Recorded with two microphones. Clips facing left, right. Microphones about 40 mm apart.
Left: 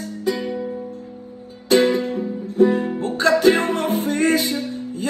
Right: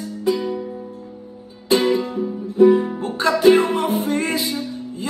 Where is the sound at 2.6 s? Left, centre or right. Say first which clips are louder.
Right 3 dB; right.